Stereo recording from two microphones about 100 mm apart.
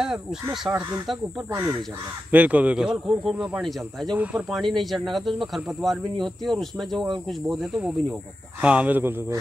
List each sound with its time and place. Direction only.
0.0 s speech: 5° right (ahead or behind)
1.5 s speech: 30° right (ahead or behind)
2.3 s speech: 15° right (ahead or behind); by 4.2 s 5° left (ahead or behind)
4.2 s speech: 15° right (ahead or behind)
4.5 s speech: centre (ahead or behind)
8.5 s speech: 15° right (ahead or behind)